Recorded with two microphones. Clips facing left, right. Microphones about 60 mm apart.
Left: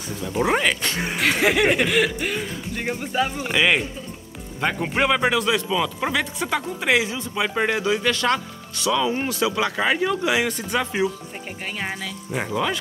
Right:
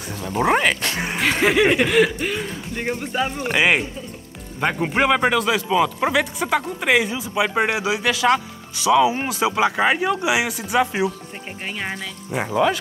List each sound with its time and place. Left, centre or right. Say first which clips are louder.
0.4 s speech: right 2 dB; centre
5.7 s speech: right 4 dB; centre
10.2 s speech: right 1 dB; centre